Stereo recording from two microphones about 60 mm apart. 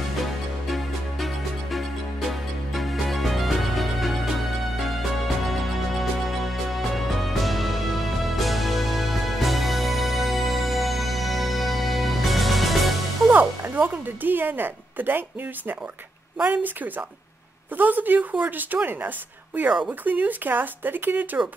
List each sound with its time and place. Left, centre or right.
0.7 s music: centre
13.3 s speech: right
16.3 s a woman's voice: right
17.7 s a woman's voice: right